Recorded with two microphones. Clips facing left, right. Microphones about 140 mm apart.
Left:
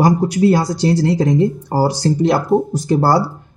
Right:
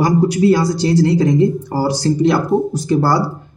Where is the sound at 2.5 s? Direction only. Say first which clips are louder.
Left 1 dB; centre (ahead or behind).